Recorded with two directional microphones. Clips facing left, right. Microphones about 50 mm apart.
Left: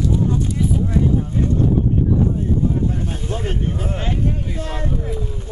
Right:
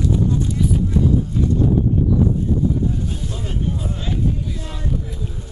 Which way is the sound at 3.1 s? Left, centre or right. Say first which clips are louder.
Left 3 dB; left.